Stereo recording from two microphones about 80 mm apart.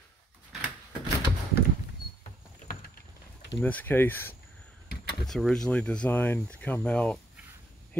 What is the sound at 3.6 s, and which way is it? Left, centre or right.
Speech, left.